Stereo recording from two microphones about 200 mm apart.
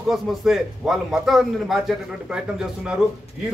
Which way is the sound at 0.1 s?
Centre (ahead or behind).